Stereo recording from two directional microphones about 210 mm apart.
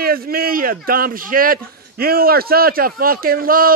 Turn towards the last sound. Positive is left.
turn(degrees=-45)  # may be behind; listen again after turning